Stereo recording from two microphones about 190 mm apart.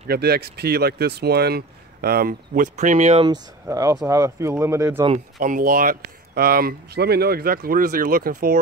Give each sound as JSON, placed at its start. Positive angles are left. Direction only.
{"t": 0.1, "sound": "speech", "side_deg": -55}
{"t": 3.3, "sound": "speech", "side_deg": -15}
{"t": 5.4, "sound": "speech", "side_deg": -45}